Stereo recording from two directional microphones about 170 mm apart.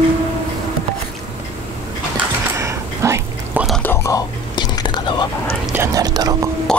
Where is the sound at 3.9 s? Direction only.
20° left (ahead or behind).